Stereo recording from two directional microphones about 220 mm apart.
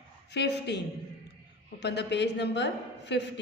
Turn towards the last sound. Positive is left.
turn(degrees=50)  # may be behind; listen again after turning